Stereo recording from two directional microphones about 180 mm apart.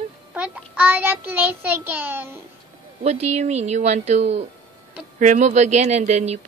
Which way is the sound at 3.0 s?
35° right (ahead or behind).